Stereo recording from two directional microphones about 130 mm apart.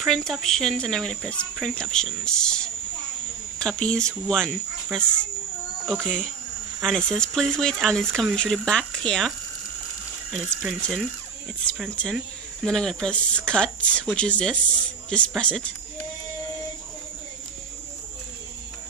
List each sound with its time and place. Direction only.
0.0 s speech: centre (ahead or behind)
6.0 s speech: 5° left (ahead or behind)
10.3 s speech: centre (ahead or behind)
12.6 s speech: 5° left (ahead or behind)